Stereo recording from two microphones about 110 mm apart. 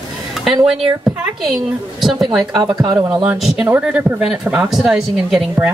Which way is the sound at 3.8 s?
10° right (ahead or behind).